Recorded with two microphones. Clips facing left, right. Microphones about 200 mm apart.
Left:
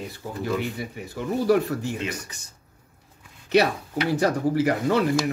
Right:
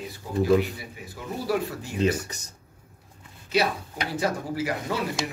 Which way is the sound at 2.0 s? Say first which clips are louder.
Right 7 dB; 40° right (ahead or behind).